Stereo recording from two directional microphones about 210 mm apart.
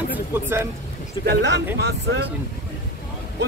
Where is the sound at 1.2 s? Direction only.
55° right (ahead or behind).